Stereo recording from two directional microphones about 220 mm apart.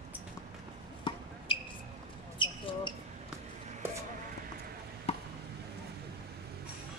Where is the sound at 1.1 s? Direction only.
20° left (ahead or behind).